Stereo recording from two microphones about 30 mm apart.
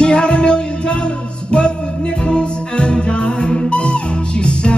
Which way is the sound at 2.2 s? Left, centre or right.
Left.